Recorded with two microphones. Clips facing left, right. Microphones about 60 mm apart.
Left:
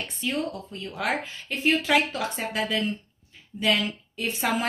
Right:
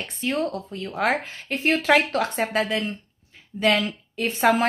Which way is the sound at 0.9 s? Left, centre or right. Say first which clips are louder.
Right 5 dB; right.